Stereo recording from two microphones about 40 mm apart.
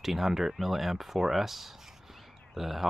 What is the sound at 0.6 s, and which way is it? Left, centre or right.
Speech, centre.